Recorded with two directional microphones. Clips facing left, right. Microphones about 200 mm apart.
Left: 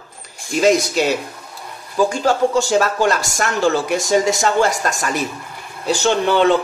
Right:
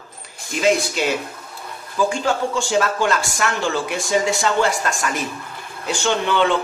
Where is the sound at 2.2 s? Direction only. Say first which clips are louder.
Left 5 dB; 40° left (ahead or behind).